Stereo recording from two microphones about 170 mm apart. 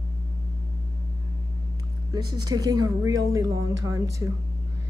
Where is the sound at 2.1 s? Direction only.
25° right (ahead or behind).